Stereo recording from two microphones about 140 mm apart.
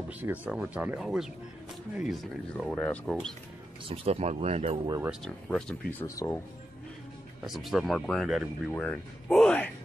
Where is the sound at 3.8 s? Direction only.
45° right (ahead or behind).